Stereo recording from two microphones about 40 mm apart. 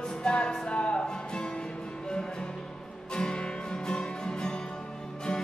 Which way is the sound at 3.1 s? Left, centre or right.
Left.